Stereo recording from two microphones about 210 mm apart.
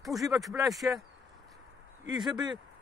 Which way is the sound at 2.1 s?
20° right (ahead or behind).